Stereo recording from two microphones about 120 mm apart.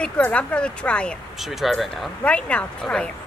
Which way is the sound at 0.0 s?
10° left (ahead or behind).